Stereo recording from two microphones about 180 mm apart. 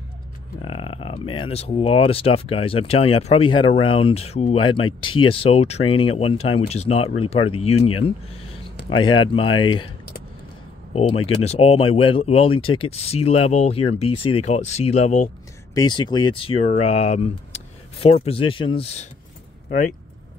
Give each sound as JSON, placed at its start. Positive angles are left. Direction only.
{"t": 0.6, "sound": "speech", "side_deg": 30}
{"t": 10.9, "sound": "speech", "side_deg": 35}
{"t": 15.7, "sound": "speech", "side_deg": 25}